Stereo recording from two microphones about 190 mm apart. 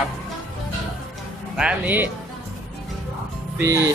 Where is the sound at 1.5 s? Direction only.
5° right (ahead or behind).